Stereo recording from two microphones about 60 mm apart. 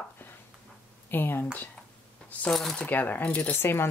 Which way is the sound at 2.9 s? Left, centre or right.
Left.